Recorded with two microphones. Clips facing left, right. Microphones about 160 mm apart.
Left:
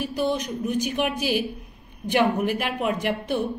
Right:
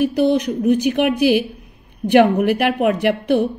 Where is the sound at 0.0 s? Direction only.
65° right (ahead or behind).